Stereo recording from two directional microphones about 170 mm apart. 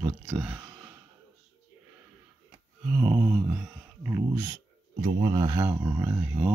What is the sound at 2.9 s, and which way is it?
Speech, 10° right (ahead or behind).